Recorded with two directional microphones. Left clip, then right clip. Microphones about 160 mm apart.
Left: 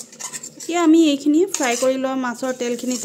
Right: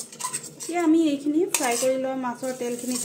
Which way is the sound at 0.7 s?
90° left.